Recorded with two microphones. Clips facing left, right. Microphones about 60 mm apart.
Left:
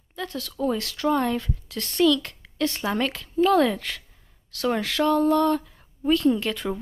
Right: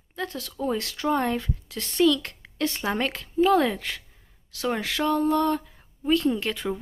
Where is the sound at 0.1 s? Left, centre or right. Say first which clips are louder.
Even; right.